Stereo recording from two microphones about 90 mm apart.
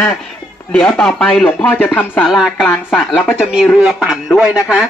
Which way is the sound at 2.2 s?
Centre (ahead or behind).